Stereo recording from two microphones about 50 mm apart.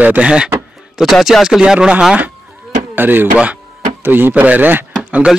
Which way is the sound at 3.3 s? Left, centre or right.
Right.